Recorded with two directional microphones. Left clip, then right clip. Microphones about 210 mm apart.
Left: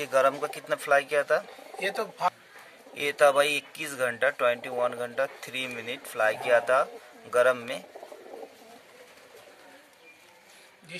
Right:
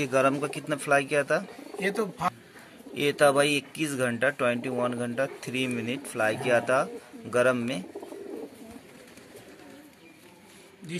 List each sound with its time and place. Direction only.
0.0 s speech: centre (ahead or behind)
1.9 s speech: 45° left (ahead or behind)
2.9 s speech: centre (ahead or behind)